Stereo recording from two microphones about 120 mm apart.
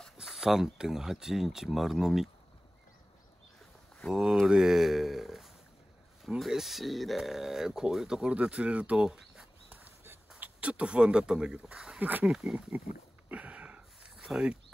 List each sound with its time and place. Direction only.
0.0 s speech: centre (ahead or behind)
4.1 s speech: 5° right (ahead or behind)
9.7 s a sound: 15° right (ahead or behind)
10.4 s speech: 10° right (ahead or behind)
12.4 s speech: 5° right (ahead or behind)
13.3 s a sound: 10° right (ahead or behind)